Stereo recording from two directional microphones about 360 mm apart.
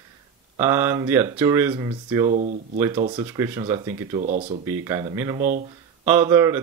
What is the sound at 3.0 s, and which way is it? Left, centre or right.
Speech, centre.